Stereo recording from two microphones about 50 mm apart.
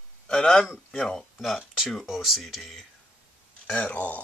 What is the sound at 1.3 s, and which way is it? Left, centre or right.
Speech, centre.